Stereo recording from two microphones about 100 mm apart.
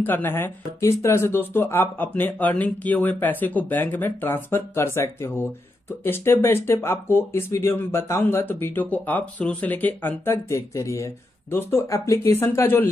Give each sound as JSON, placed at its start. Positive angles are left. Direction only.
{"t": 0.0, "sound": "speech", "side_deg": 20}
{"t": 10.3, "sound": "speech", "side_deg": 30}